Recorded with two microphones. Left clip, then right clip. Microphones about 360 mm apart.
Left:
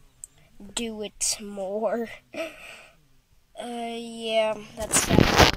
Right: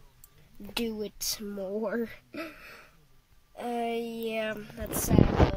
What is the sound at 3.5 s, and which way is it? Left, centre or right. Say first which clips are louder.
Speech: right 1 dB; centre.